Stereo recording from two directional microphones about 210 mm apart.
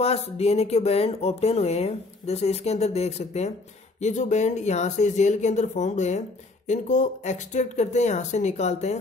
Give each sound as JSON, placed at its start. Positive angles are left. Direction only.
{"t": 0.0, "sound": "speech", "side_deg": 30}